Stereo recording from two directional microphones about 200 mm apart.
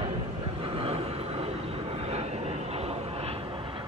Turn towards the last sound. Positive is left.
turn(degrees=-30)  # may be behind; listen again after turning